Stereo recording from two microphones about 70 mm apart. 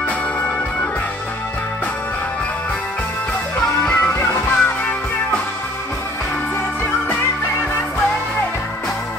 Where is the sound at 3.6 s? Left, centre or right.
Centre.